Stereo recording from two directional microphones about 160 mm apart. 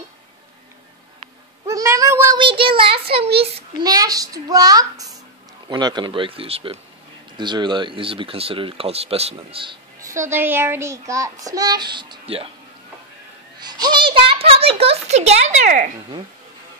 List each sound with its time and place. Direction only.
1.7 s cat: 20° right (ahead or behind)
2.3 s speech: 30° right (ahead or behind)
3.8 s child singing: 20° right (ahead or behind)
5.7 s speech: 25° right (ahead or behind)
9.9 s child singing: 20° right (ahead or behind)
13.6 s a child's voice: 25° right (ahead or behind); by 15.9 s 50° right (ahead or behind)